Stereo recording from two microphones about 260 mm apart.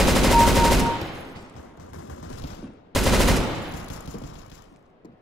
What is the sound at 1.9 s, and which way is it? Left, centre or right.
Gunshot, left.